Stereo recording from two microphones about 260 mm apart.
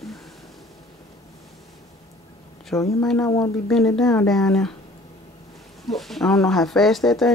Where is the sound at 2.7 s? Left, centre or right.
Centre.